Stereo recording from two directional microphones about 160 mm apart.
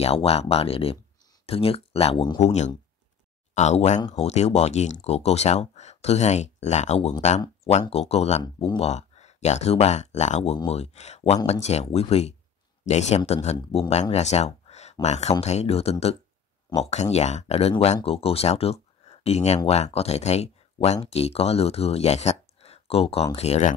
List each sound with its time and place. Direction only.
0.0 s speech: 40° left (ahead or behind)